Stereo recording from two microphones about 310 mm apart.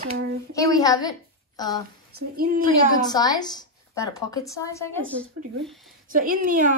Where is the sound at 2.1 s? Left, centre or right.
Right.